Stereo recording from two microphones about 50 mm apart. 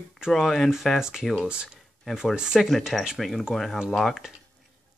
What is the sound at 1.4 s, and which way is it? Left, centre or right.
Speech, centre.